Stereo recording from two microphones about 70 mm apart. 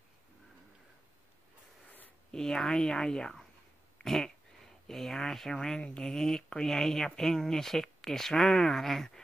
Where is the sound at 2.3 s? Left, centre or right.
Centre.